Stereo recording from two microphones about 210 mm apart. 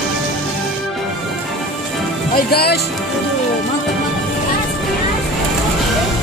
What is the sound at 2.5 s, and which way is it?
Speech, 50° left (ahead or behind).